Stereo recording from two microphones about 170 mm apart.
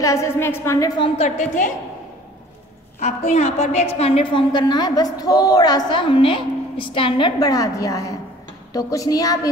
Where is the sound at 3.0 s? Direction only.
40° left (ahead or behind); by 9.5 s 20° left (ahead or behind).